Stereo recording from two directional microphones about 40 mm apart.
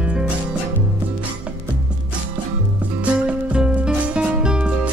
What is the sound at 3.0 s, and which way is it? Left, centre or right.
Music, right.